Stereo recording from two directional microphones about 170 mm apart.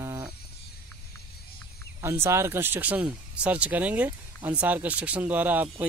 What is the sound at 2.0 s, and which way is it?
Speech, 15° right (ahead or behind).